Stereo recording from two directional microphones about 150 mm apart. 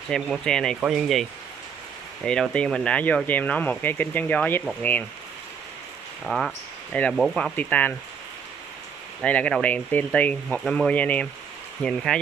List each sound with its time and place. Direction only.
0.1 s speech: 5° left (ahead or behind)
2.2 s speech: 5° left (ahead or behind)
6.2 s speech: centre (ahead or behind)
7.5 s speech: 10° left (ahead or behind)
9.2 s speech: 10° left (ahead or behind)